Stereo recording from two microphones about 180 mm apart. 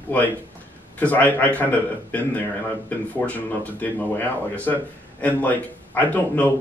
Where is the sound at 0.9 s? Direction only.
10° left (ahead or behind).